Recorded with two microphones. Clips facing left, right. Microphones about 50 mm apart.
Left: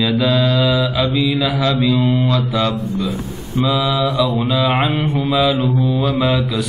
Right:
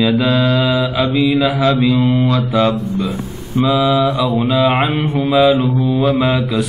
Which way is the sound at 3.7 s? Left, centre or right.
Centre.